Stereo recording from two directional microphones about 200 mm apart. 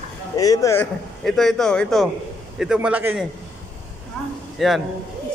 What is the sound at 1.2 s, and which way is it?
Speech, centre (ahead or behind).